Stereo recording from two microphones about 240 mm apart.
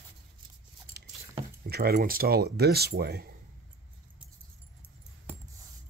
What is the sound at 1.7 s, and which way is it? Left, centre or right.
Speech, right.